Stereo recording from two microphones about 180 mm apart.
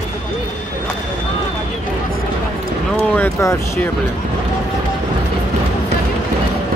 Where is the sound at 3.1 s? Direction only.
15° left (ahead or behind).